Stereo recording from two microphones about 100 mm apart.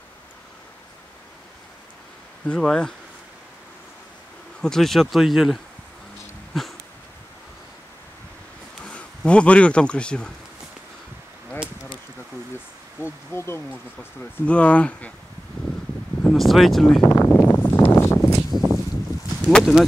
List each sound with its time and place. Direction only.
2.4 s speech: 10° left (ahead or behind)
4.6 s speech: 5° left (ahead or behind)
6.5 s a sound: centre (ahead or behind)
8.8 s speech: 10° left (ahead or behind)
13.0 s speech: 25° left (ahead or behind)
14.4 s speech: 10° left (ahead or behind)
16.2 s speech: 5° left (ahead or behind)
17.0 s speech: 30° left (ahead or behind)
17.3 s a sound: 20° left (ahead or behind)
18.5 s a sound: centre (ahead or behind)
19.6 s speech: 5° right (ahead or behind)